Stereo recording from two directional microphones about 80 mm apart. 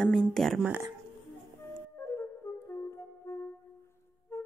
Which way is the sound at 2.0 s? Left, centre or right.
Left.